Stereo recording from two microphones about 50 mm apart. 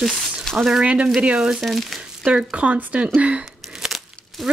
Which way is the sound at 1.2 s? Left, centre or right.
Right.